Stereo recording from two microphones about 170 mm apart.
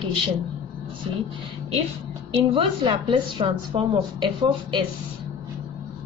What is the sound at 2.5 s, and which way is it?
A woman's voice, 30° right (ahead or behind).